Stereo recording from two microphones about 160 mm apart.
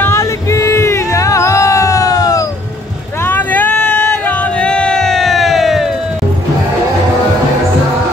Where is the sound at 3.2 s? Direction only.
10° left (ahead or behind).